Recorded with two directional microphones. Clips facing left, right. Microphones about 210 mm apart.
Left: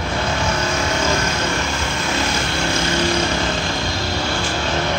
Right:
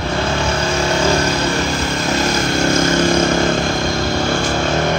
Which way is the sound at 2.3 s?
40° right (ahead or behind).